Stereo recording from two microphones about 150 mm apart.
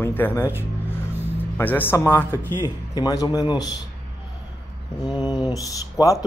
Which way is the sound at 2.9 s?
25° left (ahead or behind).